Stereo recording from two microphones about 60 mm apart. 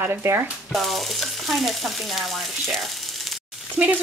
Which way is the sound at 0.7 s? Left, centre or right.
Centre.